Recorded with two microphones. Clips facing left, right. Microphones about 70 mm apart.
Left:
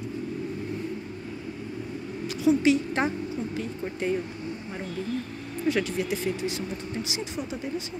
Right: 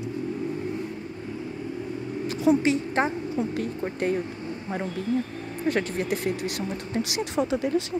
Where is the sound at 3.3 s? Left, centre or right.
Right.